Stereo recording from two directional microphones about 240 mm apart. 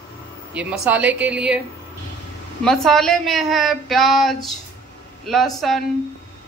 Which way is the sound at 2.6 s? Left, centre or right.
Centre.